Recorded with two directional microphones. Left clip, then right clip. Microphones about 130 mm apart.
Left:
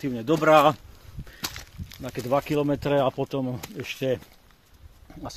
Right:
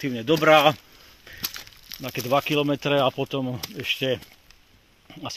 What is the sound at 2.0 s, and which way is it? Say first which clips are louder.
Speech: right 2 dB; 15° right (ahead or behind).